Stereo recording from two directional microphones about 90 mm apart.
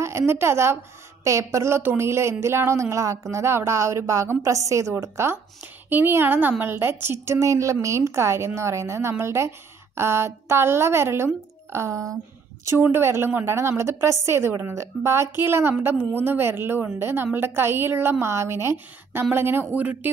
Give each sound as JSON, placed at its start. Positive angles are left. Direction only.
{"t": 0.3, "sound": "a woman's voice", "side_deg": -30}
{"t": 12.8, "sound": "a woman's voice", "side_deg": -25}